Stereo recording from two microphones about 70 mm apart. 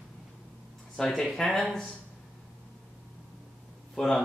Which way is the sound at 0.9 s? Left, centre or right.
Centre.